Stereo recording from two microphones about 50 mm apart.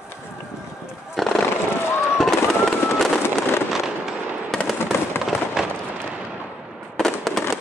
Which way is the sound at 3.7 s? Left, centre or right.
Centre.